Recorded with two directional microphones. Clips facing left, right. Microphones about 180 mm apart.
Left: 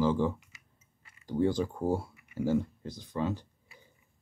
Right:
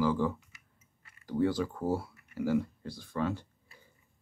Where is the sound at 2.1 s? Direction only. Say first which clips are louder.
Left 1 dB; 20° left (ahead or behind).